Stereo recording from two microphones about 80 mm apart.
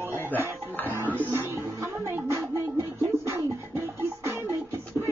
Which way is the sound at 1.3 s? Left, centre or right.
Right.